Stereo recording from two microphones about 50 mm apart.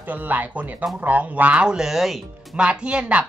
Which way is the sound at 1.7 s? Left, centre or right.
Centre.